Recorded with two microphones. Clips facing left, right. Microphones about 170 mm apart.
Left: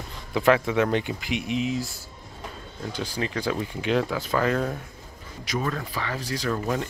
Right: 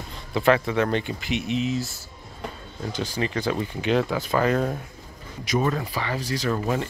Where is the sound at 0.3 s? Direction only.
5° left (ahead or behind).